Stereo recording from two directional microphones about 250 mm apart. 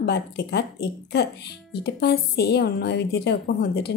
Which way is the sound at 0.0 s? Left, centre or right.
Left.